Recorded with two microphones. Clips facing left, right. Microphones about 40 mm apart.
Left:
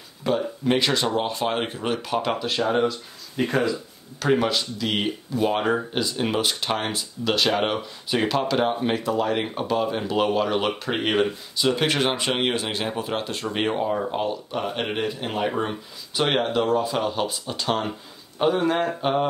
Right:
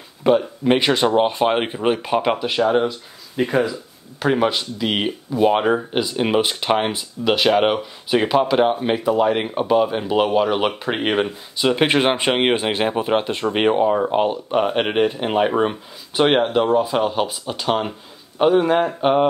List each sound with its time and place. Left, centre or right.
0.3 s speech: right